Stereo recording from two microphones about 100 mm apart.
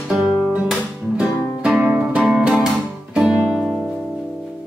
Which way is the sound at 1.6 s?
10° right (ahead or behind).